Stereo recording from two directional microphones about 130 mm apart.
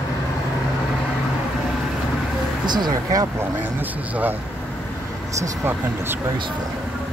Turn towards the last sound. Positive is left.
turn(degrees=-15)  # may be behind; listen again after turning